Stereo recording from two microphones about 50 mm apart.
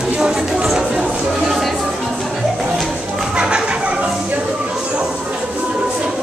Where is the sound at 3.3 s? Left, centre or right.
Centre.